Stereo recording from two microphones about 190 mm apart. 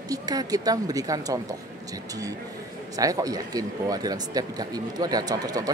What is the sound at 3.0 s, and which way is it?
Speech, 20° right (ahead or behind).